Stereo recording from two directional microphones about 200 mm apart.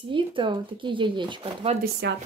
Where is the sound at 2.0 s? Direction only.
60° right (ahead or behind).